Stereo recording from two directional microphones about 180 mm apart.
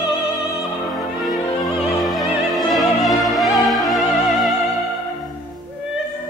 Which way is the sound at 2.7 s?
Centre (ahead or behind).